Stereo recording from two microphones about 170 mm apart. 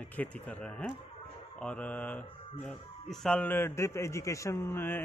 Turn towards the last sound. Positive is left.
turn(degrees=15)  # may be behind; listen again after turning